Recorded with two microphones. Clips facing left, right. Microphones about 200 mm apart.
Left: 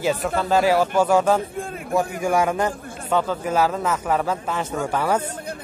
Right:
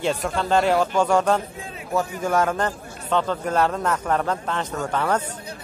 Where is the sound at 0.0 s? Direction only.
5° left (ahead or behind).